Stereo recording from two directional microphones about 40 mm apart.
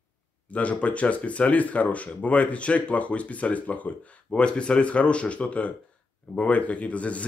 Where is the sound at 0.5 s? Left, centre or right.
Left.